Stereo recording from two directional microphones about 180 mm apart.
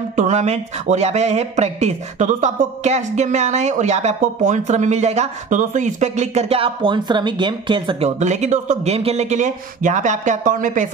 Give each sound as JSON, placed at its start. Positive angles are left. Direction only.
{"t": 0.1, "sound": "speech", "side_deg": -40}
{"t": 8.2, "sound": "speech", "side_deg": -40}